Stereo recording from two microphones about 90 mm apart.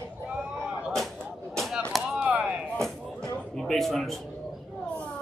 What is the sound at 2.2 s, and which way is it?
Chop, 15° right (ahead or behind).